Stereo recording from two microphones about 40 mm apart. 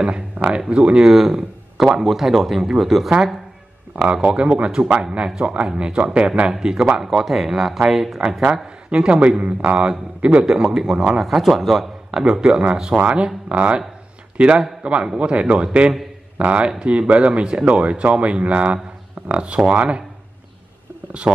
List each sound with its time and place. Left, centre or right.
0.7 s speech: right
1.0 s speech: centre
3.9 s speech: right
7.1 s a man's voice: centre
8.9 s speech: right
10.4 s a man's voice: centre
16.3 s speech: right
16.6 s speech: right